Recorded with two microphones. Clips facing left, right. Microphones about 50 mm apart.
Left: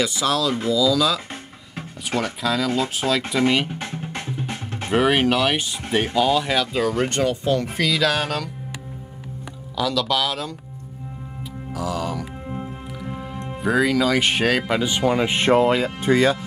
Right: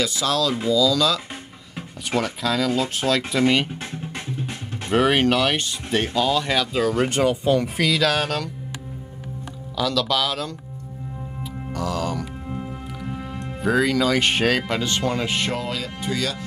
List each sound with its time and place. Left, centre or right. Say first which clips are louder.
0.0 s speech: left 1 dB; centre
3.9 s music: left 1 dB; left
4.9 s speech: even; centre
9.8 s speech: even; centre
11.7 s speech: even; centre
13.6 s speech: left 1 dB; centre; by 16.3 s left